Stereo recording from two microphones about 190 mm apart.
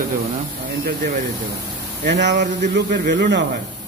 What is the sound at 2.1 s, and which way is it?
Speech, 65° right (ahead or behind).